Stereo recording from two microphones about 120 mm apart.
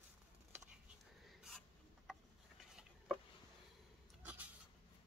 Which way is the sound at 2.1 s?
5° right (ahead or behind).